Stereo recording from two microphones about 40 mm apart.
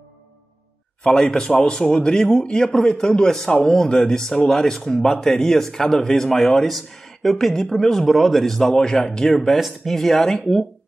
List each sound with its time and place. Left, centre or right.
1.0 s a man's voice: centre
8.6 s a man's voice: centre
9.6 s speech: centre
9.9 s a man's voice: centre